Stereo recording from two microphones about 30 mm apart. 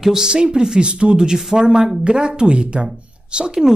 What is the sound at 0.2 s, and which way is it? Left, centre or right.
Speech, right.